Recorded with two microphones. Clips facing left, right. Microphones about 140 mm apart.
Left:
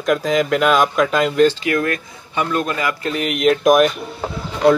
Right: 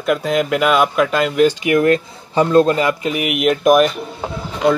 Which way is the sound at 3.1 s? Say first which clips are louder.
Even; 10° right (ahead or behind).